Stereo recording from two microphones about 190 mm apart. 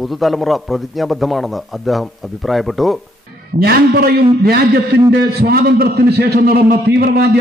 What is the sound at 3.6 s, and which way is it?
A man's voice, 55° right (ahead or behind).